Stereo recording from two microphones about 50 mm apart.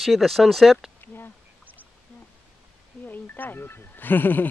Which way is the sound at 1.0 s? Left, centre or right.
Left.